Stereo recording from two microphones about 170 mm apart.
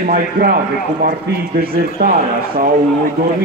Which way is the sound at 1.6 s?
60° right (ahead or behind).